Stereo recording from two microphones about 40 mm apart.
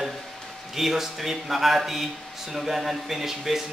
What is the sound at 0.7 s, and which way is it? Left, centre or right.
A man's voice, centre.